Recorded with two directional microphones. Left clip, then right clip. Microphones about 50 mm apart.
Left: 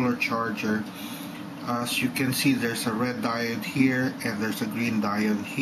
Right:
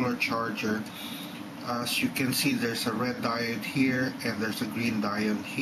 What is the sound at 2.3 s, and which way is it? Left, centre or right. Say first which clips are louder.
Speech: left 3 dB; centre.